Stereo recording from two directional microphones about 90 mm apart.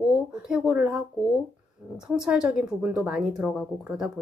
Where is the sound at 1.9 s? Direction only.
5° right (ahead or behind).